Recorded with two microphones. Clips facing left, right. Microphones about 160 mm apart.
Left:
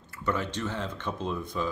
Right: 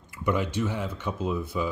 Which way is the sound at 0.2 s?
15° right (ahead or behind).